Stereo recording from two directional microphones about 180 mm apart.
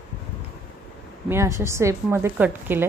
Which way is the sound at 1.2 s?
15° right (ahead or behind).